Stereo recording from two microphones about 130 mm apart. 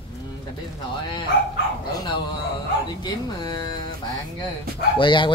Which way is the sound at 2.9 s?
35° left (ahead or behind).